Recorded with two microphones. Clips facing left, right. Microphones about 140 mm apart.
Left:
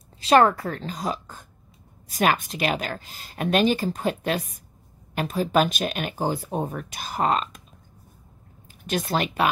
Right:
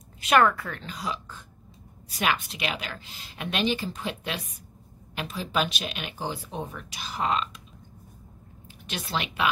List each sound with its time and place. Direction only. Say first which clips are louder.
0.2 s a woman's voice: left 4 dB; 35° left (ahead or behind)
8.8 s a woman's voice: left 7 dB; 45° left (ahead or behind)